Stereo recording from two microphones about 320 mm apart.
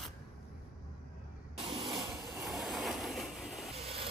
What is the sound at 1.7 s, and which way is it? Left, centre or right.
Train, centre.